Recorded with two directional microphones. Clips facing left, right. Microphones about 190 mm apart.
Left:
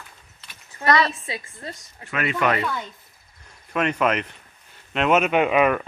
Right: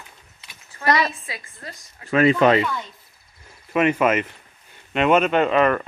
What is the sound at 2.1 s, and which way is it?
Speech, 30° right (ahead or behind).